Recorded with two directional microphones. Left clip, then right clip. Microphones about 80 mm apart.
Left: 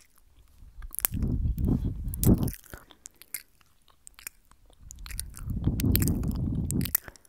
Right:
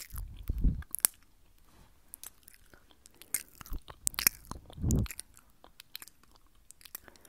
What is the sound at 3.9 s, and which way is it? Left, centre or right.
Chewing, right.